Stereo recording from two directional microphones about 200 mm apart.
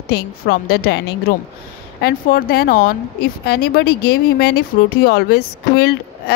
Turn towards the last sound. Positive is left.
turn(degrees=50)  # may be behind; listen again after turning